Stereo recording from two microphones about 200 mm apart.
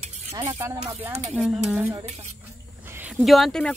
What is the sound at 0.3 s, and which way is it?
Speech, 30° right (ahead or behind).